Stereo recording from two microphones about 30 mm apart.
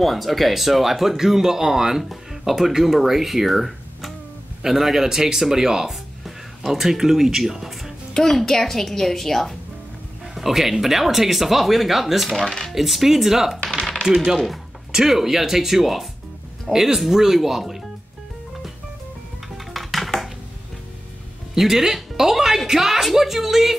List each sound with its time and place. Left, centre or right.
0.0 s speech: centre
5.9 s music: centre
6.7 s speech: centre
8.1 s speech: centre
10.3 s speech: centre
12.3 s speech: centre
12.7 s speech: centre
15.0 s speech: centre
19.5 s music: centre
21.5 s speech: centre